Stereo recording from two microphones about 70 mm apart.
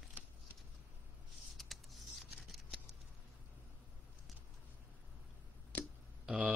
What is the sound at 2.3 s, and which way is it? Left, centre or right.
Scissors, centre.